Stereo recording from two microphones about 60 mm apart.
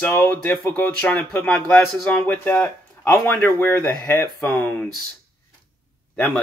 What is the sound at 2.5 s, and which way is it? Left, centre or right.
Speech, left.